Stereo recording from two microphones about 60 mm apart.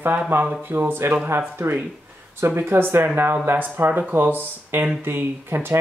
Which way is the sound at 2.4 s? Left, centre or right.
Right.